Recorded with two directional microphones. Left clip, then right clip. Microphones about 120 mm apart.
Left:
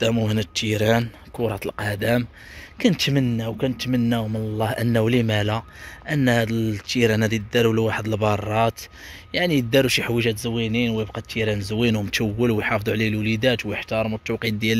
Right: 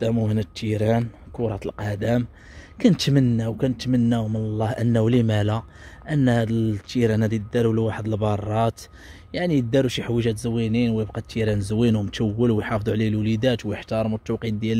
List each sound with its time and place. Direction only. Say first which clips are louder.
0.0 s speech: left 2 dB; 10° right (ahead or behind)
2.8 s a man's voice: even; 45° right (ahead or behind); by 10.2 s 15° right (ahead or behind)
10.2 s speech: left 1 dB; 35° right (ahead or behind)
12.1 s a man's voice: left 1 dB; 25° right (ahead or behind)
14.4 s speech: left 4 dB; 10° right (ahead or behind)